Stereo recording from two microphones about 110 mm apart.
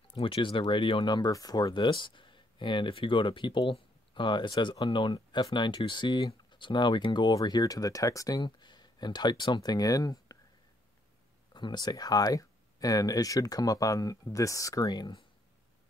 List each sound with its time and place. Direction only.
0.1 s speech: 55° left (ahead or behind); by 10.3 s 30° left (ahead or behind)
11.5 s speech: 40° left (ahead or behind)